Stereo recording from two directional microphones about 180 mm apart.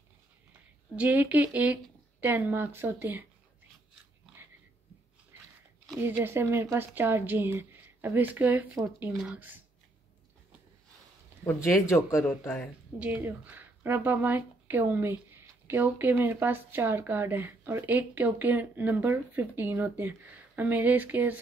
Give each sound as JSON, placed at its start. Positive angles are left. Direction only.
{"t": 0.9, "sound": "speech", "side_deg": -10}
{"t": 5.9, "sound": "speech", "side_deg": -15}
{"t": 11.4, "sound": "speech", "side_deg": 15}
{"t": 12.3, "sound": "speech", "side_deg": 5}
{"t": 13.0, "sound": "speech", "side_deg": -10}